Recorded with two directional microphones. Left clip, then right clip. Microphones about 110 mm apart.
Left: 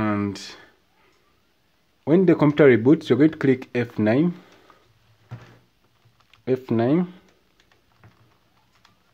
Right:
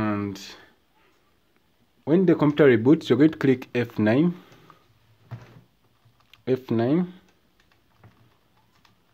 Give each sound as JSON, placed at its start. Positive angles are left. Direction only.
{"t": 0.0, "sound": "a sound", "side_deg": 25}
{"t": 2.0, "sound": "speech", "side_deg": 25}
{"t": 6.3, "sound": "speech", "side_deg": 5}